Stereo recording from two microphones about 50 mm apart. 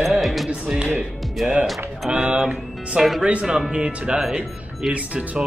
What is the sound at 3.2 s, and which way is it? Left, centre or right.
Speech, centre.